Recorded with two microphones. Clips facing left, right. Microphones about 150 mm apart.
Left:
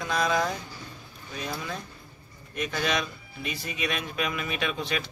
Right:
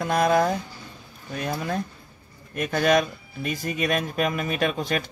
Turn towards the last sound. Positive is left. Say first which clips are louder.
# right 5 dB
turn(degrees=-45)  # may be behind; listen again after turning